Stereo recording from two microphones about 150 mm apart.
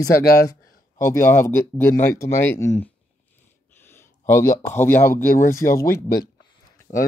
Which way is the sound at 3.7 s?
15° left (ahead or behind).